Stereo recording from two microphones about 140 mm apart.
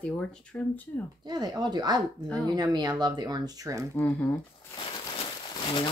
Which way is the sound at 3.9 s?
15° left (ahead or behind).